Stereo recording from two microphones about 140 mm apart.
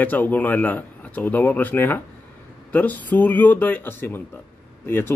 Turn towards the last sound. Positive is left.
turn(degrees=15)  # may be behind; listen again after turning